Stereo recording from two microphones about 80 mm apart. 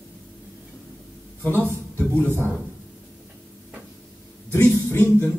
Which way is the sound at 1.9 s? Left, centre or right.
Centre.